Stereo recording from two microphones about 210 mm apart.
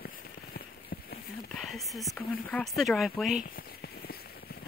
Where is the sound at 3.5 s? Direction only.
45° left (ahead or behind).